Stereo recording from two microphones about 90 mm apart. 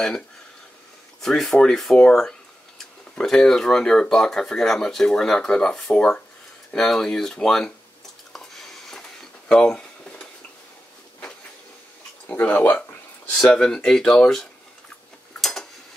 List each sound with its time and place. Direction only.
1.2 s speech: 5° left (ahead or behind)
8.3 s a sound: 5° left (ahead or behind)
12.3 s speech: 15° left (ahead or behind)